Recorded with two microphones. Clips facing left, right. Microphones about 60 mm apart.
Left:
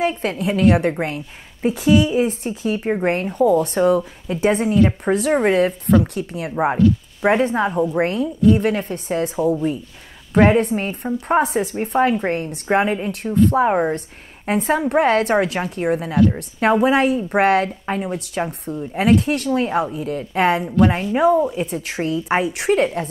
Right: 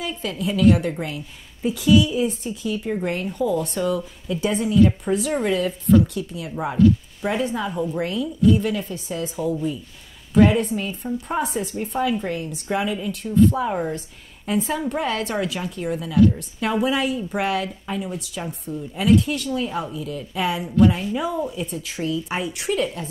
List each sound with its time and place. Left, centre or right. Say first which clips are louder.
0.0 s a woman's voice: left 6 dB; left